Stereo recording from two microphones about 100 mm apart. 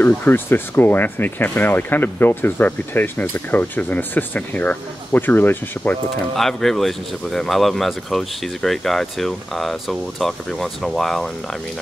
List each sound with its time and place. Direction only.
0.2 s speech: 20° left (ahead or behind)
6.3 s speech: 5° left (ahead or behind)